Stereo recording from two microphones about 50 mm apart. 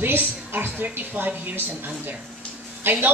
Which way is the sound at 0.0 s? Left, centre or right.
Right.